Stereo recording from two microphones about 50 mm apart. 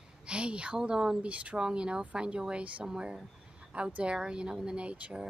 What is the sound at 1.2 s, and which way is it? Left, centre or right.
A woman's voice, right.